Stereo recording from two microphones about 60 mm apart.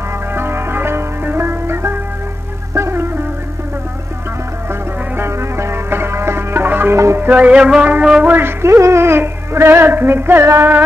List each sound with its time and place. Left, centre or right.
0.3 s music: right
5.1 s music: right; by 7.8 s centre
8.0 s a man's voice: centre
8.3 s music: right